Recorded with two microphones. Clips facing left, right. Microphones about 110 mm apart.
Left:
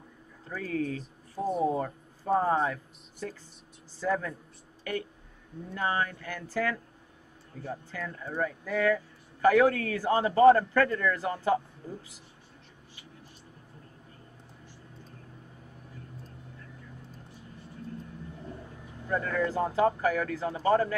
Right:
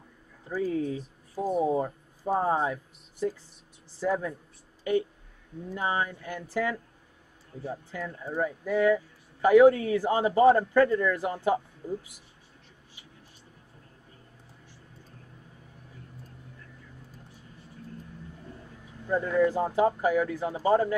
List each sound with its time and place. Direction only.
0.5 s speech: 15° right (ahead or behind)
5.7 s speech: 15° right (ahead or behind)
7.9 s speech: 15° right (ahead or behind)
19.0 s speech: 15° right (ahead or behind)